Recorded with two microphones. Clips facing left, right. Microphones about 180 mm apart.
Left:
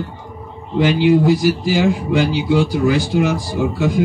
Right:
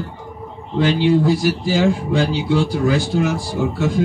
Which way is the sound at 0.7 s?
15° left (ahead or behind).